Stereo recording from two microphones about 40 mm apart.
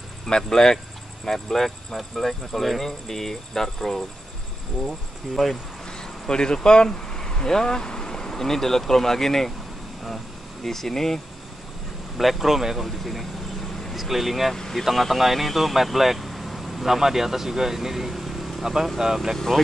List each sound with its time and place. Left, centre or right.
0.4 s speech: centre
5.9 s speech: centre
12.2 s speech: centre
19.3 s speech: centre